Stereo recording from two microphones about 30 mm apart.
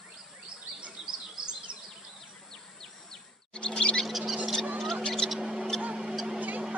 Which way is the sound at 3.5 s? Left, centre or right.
Left.